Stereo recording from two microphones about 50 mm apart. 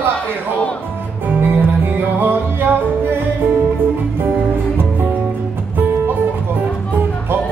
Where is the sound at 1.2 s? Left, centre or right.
Right.